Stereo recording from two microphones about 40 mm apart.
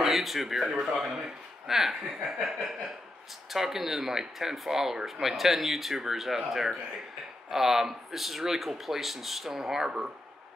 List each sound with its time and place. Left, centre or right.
0.0 s speech: centre
9.8 s speech: right